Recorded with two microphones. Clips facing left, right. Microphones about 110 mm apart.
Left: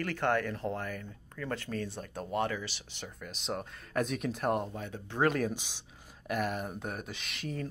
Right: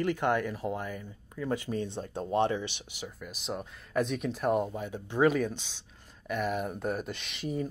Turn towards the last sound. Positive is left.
turn(degrees=0)  # may be behind; listen again after turning